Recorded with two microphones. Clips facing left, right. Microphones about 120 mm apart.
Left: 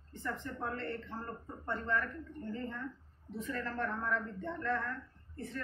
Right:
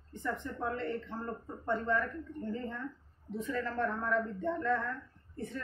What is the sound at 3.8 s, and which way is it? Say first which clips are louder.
A man's voice: right 4 dB; 15° right (ahead or behind).